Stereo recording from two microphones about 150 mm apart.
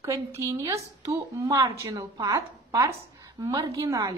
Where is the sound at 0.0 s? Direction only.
20° right (ahead or behind).